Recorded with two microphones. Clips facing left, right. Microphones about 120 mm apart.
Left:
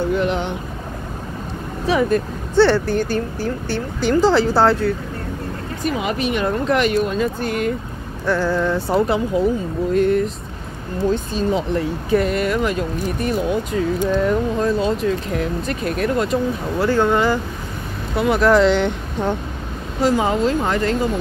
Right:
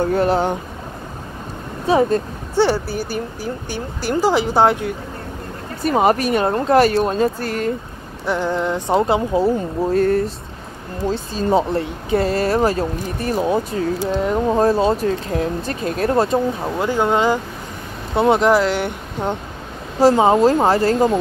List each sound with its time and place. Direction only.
0.0 s speech: 40° right (ahead or behind)
1.9 s speech: 30° right (ahead or behind)
2.5 s speech: 15° right (ahead or behind)
5.9 s speech: 45° right (ahead or behind)
8.3 s speech: 20° right (ahead or behind)
16.7 s speech: 15° right (ahead or behind)
18.5 s speech: 10° right (ahead or behind)
20.0 s speech: 35° right (ahead or behind)